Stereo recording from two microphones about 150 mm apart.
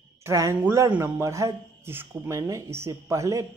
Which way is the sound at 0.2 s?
20° right (ahead or behind).